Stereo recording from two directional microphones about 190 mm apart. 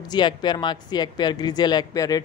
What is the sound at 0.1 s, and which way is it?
Speech, 25° left (ahead or behind).